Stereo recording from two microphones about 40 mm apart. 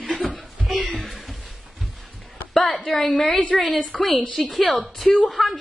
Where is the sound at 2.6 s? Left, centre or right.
Left.